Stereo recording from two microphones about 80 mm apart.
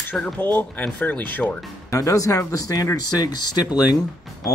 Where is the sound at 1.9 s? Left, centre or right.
Left.